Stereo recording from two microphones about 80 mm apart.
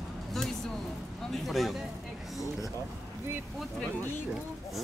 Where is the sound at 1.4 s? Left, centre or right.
Centre.